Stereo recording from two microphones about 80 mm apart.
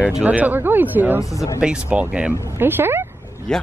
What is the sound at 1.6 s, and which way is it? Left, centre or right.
Speech, centre.